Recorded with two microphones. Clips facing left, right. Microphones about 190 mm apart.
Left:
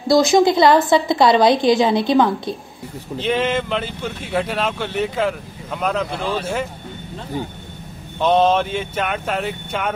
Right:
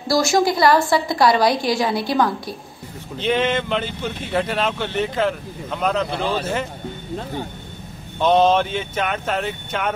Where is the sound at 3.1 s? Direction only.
Centre (ahead or behind).